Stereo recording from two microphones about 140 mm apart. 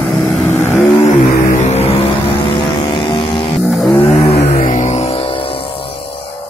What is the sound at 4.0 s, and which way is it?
Vehicle, 45° left (ahead or behind).